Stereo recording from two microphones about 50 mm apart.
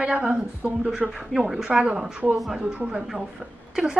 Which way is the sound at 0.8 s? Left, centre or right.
Centre.